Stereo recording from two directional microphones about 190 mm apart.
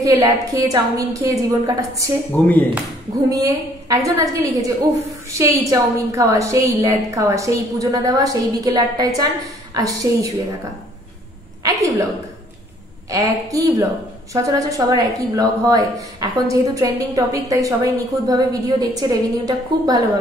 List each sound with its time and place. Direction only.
0.0 s a woman's voice: 20° right (ahead or behind)
2.3 s speech: 10° left (ahead or behind)
3.3 s a woman's voice: 20° right (ahead or behind)
11.6 s a woman's voice: 20° right (ahead or behind)
13.1 s a woman's voice: 20° right (ahead or behind)